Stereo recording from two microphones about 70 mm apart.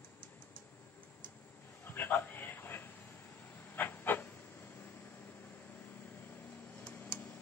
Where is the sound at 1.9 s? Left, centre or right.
Left.